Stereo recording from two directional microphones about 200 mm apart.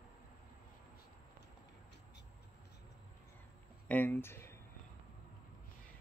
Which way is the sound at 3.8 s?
10° left (ahead or behind).